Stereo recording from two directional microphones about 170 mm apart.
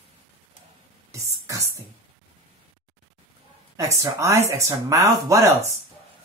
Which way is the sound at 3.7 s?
20° right (ahead or behind).